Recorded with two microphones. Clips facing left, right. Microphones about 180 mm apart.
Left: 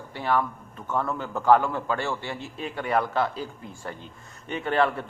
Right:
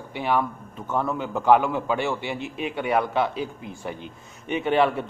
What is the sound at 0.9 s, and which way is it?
A man's voice, 10° right (ahead or behind).